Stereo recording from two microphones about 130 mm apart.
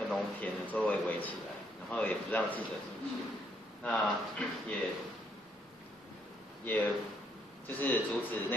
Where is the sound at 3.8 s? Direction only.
10° left (ahead or behind).